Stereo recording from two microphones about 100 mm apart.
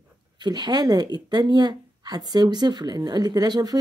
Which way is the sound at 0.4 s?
45° right (ahead or behind).